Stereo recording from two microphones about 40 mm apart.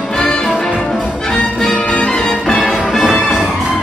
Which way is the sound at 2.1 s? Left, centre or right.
Centre.